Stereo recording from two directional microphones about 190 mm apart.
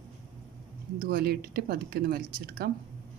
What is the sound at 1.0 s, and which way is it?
Speech, 55° right (ahead or behind).